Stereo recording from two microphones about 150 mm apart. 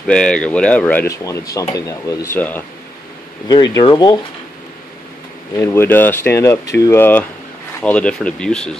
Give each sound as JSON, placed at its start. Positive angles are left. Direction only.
{"t": 0.0, "sound": "speech", "side_deg": 5}
{"t": 3.4, "sound": "speech", "side_deg": 25}
{"t": 5.6, "sound": "speech", "side_deg": 15}